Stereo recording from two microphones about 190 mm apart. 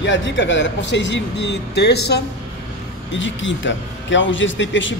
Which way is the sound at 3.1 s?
75° left (ahead or behind).